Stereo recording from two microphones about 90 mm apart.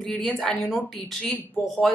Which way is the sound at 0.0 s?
Centre (ahead or behind).